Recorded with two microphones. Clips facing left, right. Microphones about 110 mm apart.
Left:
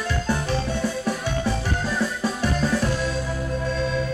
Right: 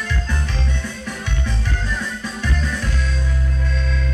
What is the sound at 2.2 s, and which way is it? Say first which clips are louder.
Music: left 3 dB; 35° left (ahead or behind).